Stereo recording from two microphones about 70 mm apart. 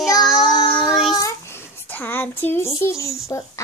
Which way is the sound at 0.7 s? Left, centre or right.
Centre.